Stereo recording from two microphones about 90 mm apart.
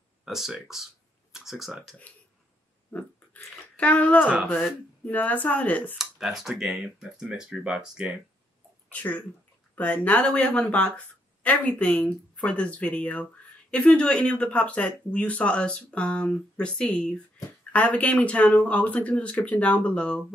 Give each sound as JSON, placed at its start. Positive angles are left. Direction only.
{"t": 0.2, "sound": "speech", "side_deg": -5}
{"t": 3.7, "sound": "speech", "side_deg": 15}
{"t": 5.9, "sound": "speech", "side_deg": -5}
{"t": 8.9, "sound": "speech", "side_deg": 15}